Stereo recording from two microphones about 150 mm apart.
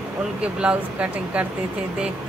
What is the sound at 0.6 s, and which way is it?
Speech, 10° right (ahead or behind).